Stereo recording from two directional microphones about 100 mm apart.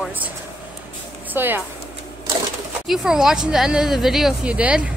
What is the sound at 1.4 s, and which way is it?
Speech, 20° right (ahead or behind).